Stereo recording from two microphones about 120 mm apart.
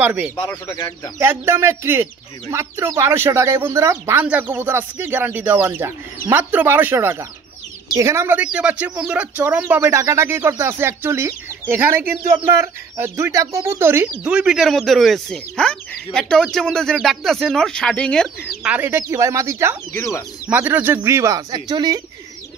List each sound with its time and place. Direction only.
0.0 s speech: 15° right (ahead or behind)
8.4 s speech: 10° right (ahead or behind)
14.2 s speech: 10° right (ahead or behind); by 18.3 s 5° left (ahead or behind)
18.6 s speech: 15° right (ahead or behind)
19.9 s speech: 25° left (ahead or behind)
20.4 s speech: 15° right (ahead or behind); by 22.0 s 35° right (ahead or behind)